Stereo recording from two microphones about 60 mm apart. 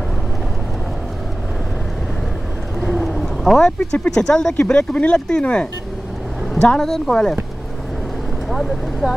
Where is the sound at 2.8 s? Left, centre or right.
Centre.